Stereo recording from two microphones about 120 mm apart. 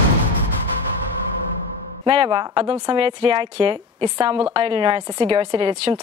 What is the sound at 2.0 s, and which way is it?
A woman's voice, 40° right (ahead or behind).